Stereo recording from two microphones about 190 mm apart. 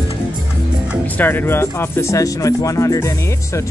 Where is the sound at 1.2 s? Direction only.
10° left (ahead or behind).